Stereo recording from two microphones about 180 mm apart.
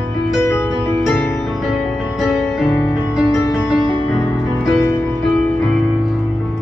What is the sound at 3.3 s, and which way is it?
Music, 15° left (ahead or behind).